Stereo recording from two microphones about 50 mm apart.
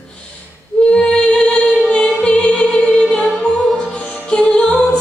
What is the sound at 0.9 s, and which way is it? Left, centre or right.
Music, left.